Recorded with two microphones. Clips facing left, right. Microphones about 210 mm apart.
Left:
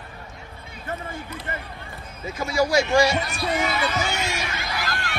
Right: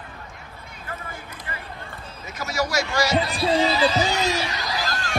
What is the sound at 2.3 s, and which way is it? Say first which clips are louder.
Speech: left 4 dB; 25° left (ahead or behind).